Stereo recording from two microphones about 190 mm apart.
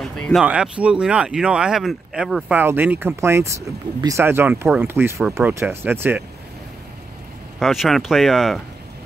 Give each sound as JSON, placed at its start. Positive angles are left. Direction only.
{"t": 0.0, "sound": "speech", "side_deg": 0}
{"t": 7.5, "sound": "speech", "side_deg": 0}